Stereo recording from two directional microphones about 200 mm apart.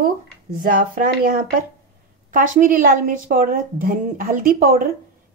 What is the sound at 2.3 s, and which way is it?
A woman's voice, 40° right (ahead or behind).